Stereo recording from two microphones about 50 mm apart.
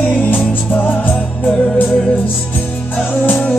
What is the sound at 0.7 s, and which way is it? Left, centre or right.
Music, left.